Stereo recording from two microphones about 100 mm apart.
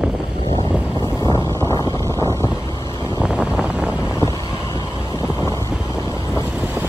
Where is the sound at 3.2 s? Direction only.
10° right (ahead or behind).